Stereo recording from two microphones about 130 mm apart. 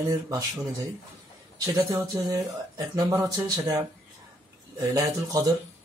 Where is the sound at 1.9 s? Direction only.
25° right (ahead or behind).